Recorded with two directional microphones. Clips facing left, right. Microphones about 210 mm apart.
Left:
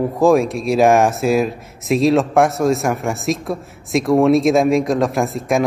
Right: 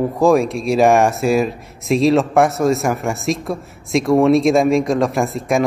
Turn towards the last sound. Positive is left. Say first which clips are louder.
# even
turn(degrees=0)  # may be behind; listen again after turning